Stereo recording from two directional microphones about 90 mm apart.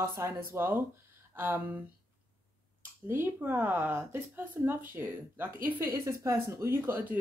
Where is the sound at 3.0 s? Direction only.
25° right (ahead or behind).